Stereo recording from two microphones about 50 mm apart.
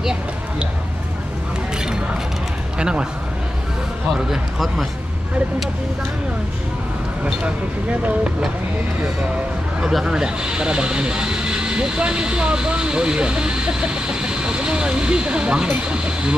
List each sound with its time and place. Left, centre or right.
2.8 s a man's voice: centre
4.3 s speech: centre
10.0 s speech: centre